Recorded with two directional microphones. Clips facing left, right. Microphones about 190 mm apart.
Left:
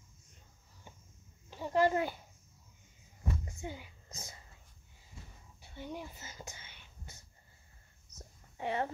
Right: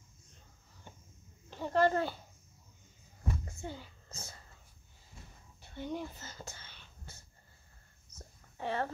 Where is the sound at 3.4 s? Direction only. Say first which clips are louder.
Even; 15° left (ahead or behind).